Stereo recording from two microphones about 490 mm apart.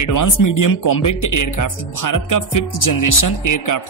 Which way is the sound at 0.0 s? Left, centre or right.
Left.